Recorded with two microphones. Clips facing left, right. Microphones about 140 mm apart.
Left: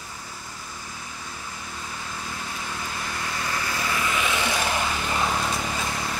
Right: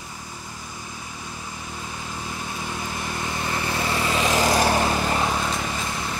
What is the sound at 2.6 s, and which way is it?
Vehicle, 20° right (ahead or behind).